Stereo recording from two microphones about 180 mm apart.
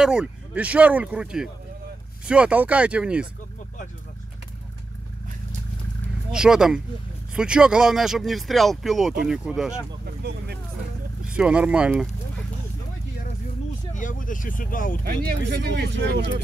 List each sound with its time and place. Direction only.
0.0 s speech: 5° right (ahead or behind)
6.3 s speech: 5° right (ahead or behind)
10.0 s vehicle: 65° right (ahead or behind)
11.2 s speech: 5° right (ahead or behind)
13.9 s speech: 45° left (ahead or behind)
15.0 s speech: 60° right (ahead or behind)